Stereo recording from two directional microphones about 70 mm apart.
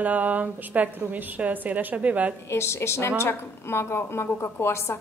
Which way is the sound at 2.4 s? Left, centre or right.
Left.